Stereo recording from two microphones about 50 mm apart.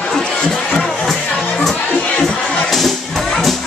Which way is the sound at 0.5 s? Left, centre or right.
Centre.